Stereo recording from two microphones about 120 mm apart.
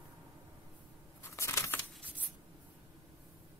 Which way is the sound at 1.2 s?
25° left (ahead or behind).